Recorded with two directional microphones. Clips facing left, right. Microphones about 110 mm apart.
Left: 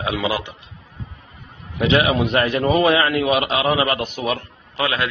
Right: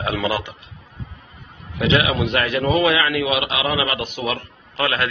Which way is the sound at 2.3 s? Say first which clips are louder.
Left 1 dB; 35° left (ahead or behind).